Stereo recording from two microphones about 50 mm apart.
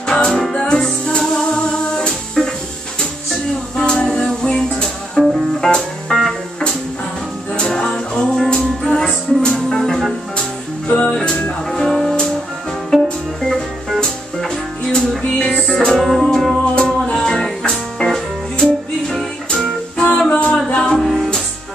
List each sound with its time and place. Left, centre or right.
0.0 s music: centre
3.7 s a sound: centre
4.1 s music: centre
7.7 s music: centre
10.9 s music: centre
16.7 s music: centre
20.2 s music: left
21.0 s music: centre